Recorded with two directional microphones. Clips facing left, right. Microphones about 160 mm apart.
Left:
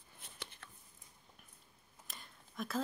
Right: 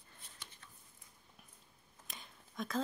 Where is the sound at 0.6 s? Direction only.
70° left (ahead or behind).